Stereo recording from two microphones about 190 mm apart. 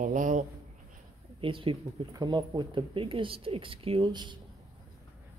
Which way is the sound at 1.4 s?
25° right (ahead or behind).